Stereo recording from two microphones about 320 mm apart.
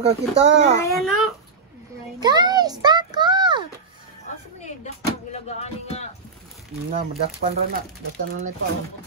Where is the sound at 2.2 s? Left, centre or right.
Centre.